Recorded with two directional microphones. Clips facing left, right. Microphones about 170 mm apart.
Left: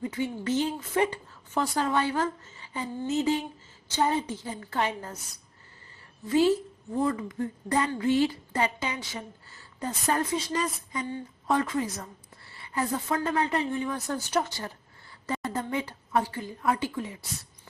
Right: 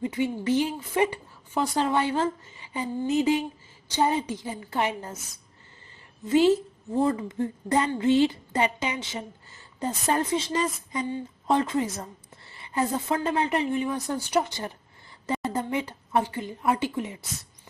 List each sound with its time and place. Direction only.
0.0 s a woman's voice: 20° right (ahead or behind)
6.2 s a woman's voice: 25° right (ahead or behind)